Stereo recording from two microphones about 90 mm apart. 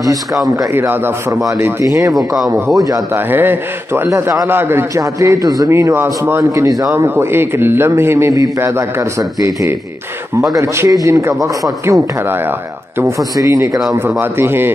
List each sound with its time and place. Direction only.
0.7 s a man's voice: 25° right (ahead or behind)
2.1 s speech: centre (ahead or behind)
2.5 s a man's voice: 40° right (ahead or behind)
3.3 s a man's voice: 20° right (ahead or behind)
4.1 s a man's voice: 35° right (ahead or behind)
4.5 s a man's voice: 25° right (ahead or behind)
7.3 s a man's voice: 25° right (ahead or behind)